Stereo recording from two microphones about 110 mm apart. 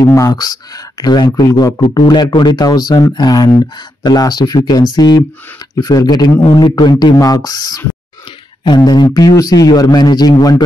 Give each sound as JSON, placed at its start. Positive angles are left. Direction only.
{"t": 0.0, "sound": "a man's voice", "side_deg": 30}
{"t": 6.4, "sound": "a man's voice", "side_deg": 55}
{"t": 6.7, "sound": "a man's voice", "side_deg": 40}